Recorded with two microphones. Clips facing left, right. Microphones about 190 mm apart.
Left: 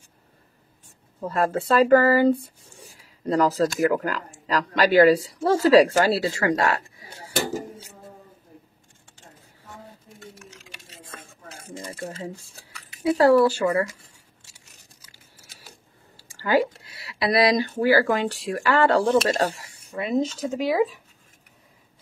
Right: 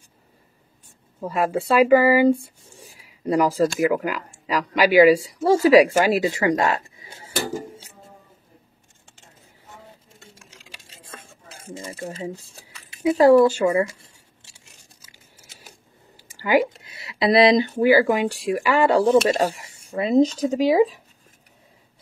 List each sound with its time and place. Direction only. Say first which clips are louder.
1.2 s speech: right 1 dB; 10° right (ahead or behind)
3.0 s a sound: right 1 dB; 10° right (ahead or behind)
3.6 s speech: right 1 dB; 10° right (ahead or behind)
10.2 s a sound: left 8 dB; 30° right (ahead or behind)
12.0 s speech: right 4 dB; 20° right (ahead or behind)
15.0 s a sound: right 1 dB; 20° right (ahead or behind)
17.7 s speech: right 3 dB; 15° right (ahead or behind)
19.0 s speech: right 3 dB; centre (ahead or behind)
19.6 s speech: right 5 dB; 25° right (ahead or behind)